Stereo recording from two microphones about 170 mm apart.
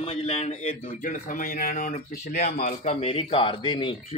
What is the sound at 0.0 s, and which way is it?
Speech, 35° left (ahead or behind).